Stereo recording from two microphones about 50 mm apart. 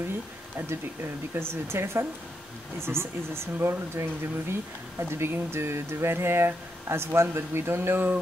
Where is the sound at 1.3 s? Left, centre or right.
Right.